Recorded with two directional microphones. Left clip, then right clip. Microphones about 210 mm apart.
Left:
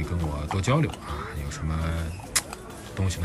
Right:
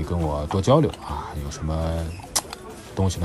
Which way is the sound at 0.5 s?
15° right (ahead or behind).